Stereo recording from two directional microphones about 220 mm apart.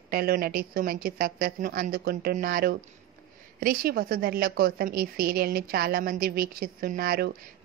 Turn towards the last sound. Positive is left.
turn(degrees=-45)  # may be behind; listen again after turning